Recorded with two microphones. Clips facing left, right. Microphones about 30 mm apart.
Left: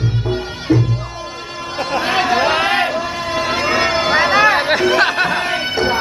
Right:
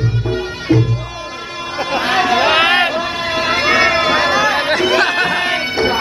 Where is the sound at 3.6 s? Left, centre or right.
Right.